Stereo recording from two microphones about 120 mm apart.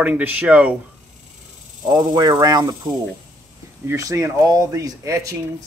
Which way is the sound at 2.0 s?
30° right (ahead or behind).